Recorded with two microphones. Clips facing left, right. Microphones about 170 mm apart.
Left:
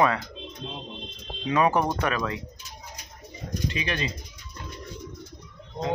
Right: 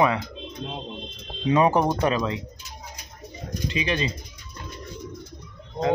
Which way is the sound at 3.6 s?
25° right (ahead or behind).